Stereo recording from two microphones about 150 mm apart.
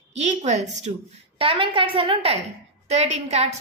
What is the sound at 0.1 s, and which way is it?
Speech, 50° right (ahead or behind).